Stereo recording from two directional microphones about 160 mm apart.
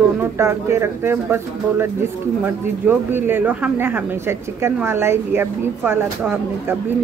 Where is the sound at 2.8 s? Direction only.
10° right (ahead or behind).